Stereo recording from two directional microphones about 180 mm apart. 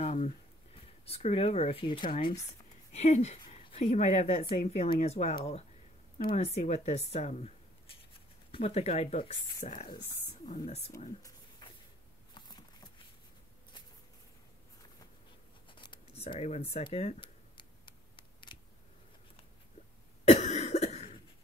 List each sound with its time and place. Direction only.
0.0 s a sound: 40° left (ahead or behind)
1.0 s speech: 35° left (ahead or behind)
9.6 s speech: 45° left (ahead or behind)
11.6 s a sound: 25° left (ahead or behind)
15.7 s scissors: 25° left (ahead or behind)
20.2 s cough: 40° left (ahead or behind)